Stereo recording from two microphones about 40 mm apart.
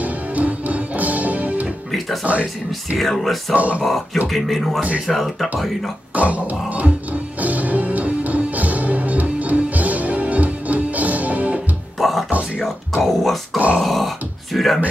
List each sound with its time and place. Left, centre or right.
0.0 s music: right
2.3 s speech: right
3.0 s speech: centre
3.5 s speech: right
3.8 s speech: centre
6.1 s music: right
12.0 s music: centre
12.6 s speech: centre